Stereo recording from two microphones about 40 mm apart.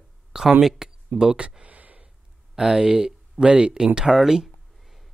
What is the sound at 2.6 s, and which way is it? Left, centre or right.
Speech, centre.